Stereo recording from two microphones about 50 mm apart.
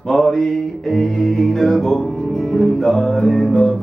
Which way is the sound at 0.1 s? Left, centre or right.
Centre.